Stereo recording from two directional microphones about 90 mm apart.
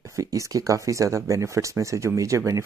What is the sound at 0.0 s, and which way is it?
Speech, 35° right (ahead or behind).